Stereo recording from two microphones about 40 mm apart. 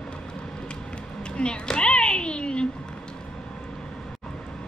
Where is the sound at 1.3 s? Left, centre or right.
Left.